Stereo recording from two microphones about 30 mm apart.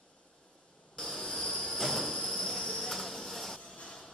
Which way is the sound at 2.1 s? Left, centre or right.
Centre.